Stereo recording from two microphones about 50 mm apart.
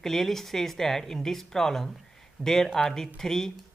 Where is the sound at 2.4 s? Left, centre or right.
Left.